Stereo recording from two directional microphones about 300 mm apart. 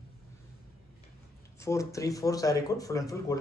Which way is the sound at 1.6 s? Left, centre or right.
Centre.